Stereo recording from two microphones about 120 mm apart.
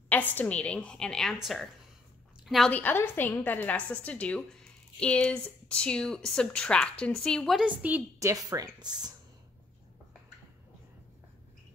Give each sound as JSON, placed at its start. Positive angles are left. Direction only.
{"t": 0.1, "sound": "a woman's voice", "side_deg": 15}
{"t": 2.7, "sound": "speech", "side_deg": 15}
{"t": 7.6, "sound": "a woman's voice", "side_deg": -10}
{"t": 8.2, "sound": "speech", "side_deg": -30}